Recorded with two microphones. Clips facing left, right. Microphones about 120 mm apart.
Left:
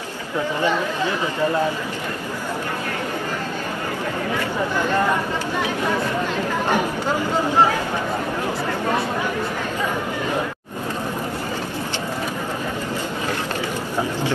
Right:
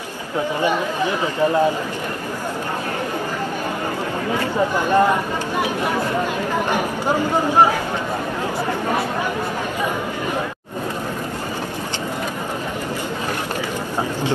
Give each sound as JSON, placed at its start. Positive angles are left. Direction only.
{"t": 0.6, "sound": "speech", "side_deg": -15}
{"t": 4.7, "sound": "speech", "side_deg": -15}
{"t": 6.7, "sound": "speech", "side_deg": -15}